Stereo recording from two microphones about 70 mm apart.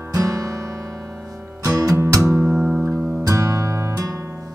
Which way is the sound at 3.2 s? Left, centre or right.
Right.